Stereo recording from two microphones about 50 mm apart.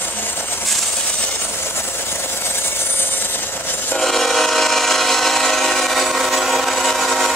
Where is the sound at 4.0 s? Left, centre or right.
Centre.